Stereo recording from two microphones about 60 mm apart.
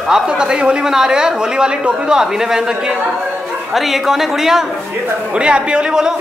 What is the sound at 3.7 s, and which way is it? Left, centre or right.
Speech, centre.